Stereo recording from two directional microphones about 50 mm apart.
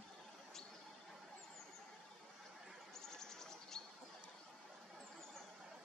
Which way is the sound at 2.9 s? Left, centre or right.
Centre.